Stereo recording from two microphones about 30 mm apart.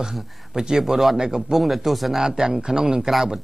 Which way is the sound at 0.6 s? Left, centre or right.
Centre.